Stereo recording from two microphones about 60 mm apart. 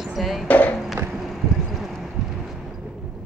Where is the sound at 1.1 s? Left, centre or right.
Centre.